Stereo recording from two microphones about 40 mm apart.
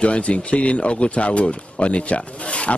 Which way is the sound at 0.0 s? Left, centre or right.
Left.